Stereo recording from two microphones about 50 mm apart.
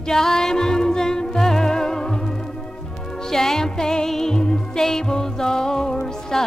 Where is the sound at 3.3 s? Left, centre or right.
Centre.